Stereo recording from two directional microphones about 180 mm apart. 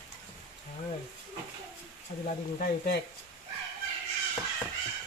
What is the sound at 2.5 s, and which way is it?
Speech, 65° left (ahead or behind).